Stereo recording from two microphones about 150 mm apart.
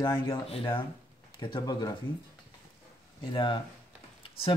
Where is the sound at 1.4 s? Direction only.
30° left (ahead or behind).